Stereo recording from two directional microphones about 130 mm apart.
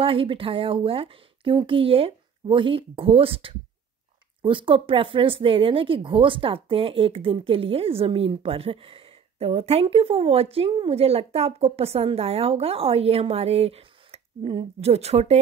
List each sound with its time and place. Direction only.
0.0 s speech: 45° right (ahead or behind)
14.9 s speech: 55° right (ahead or behind)